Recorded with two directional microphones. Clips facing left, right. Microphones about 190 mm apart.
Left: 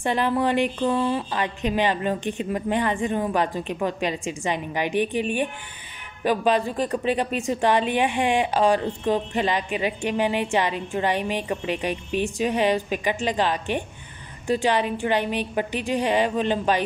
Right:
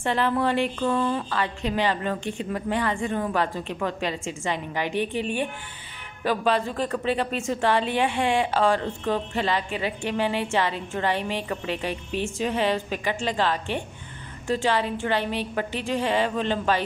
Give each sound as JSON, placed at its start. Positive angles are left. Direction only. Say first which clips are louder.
{"t": 0.0, "sound": "a woman's voice", "louder": "left 1 dB", "side_deg": 15}